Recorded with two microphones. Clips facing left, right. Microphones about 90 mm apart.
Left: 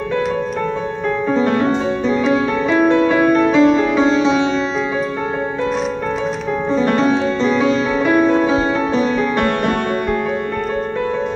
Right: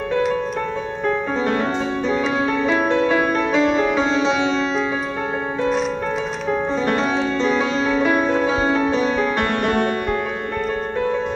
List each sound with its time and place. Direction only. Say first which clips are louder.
2.7 s music: left 6 dB; centre (ahead or behind)
9.0 s music: left 2 dB; 20° right (ahead or behind)